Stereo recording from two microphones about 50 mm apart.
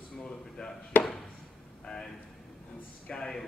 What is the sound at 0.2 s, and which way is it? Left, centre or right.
Chop, centre.